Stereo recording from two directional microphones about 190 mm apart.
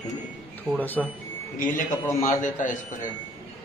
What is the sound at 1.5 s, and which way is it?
A man's voice, 45° left (ahead or behind).